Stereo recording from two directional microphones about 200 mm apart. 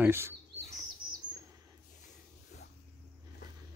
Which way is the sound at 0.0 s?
10° right (ahead or behind).